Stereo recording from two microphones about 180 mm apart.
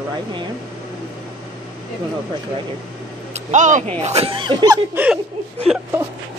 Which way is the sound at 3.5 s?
40° right (ahead or behind).